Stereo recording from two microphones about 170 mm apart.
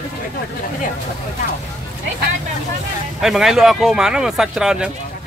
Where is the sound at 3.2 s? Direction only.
Centre (ahead or behind).